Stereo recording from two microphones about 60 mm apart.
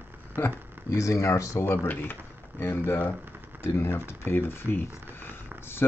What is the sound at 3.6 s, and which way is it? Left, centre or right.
Speech, left.